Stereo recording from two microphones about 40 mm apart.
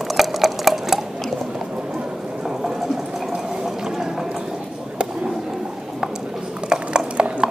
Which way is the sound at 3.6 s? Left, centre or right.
Centre.